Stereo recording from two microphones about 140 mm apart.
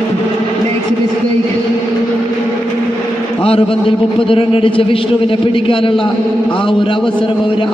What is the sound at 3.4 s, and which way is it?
A man's voice, 40° left (ahead or behind).